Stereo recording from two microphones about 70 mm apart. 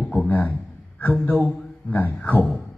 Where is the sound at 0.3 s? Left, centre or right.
Left.